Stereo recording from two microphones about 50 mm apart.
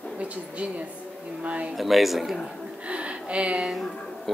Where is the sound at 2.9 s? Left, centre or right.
Right.